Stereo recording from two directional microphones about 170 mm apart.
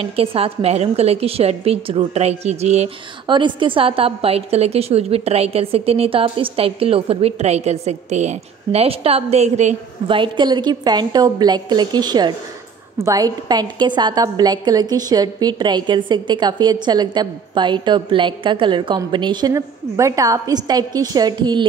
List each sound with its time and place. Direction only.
0.0 s a woman's voice: 35° right (ahead or behind)
3.3 s a woman's voice: 25° right (ahead or behind)
10.0 s a woman's voice: 30° right (ahead or behind)